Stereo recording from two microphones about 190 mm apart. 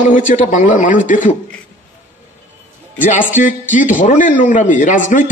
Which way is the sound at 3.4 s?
45° left (ahead or behind).